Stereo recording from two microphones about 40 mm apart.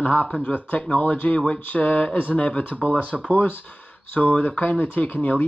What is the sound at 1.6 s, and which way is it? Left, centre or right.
Speech, left.